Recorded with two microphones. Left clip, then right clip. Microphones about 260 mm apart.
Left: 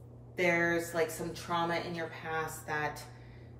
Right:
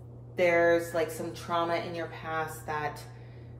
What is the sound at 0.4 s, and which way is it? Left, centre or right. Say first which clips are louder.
Speech: right 6 dB; centre.